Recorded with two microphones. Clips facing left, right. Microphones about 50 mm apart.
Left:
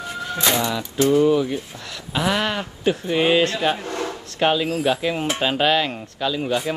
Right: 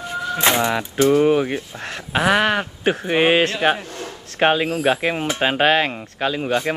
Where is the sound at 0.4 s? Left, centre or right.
Right.